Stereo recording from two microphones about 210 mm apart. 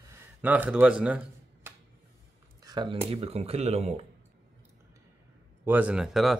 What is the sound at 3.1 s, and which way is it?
Speech, 30° right (ahead or behind).